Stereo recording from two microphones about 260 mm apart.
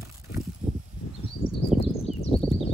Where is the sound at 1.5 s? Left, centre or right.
Left.